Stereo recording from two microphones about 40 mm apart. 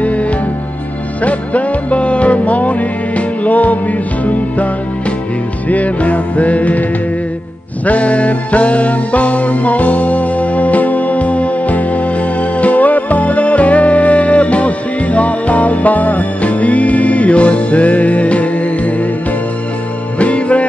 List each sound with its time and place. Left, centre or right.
0.0 s music: left
5.7 s music: left
20.2 s music: left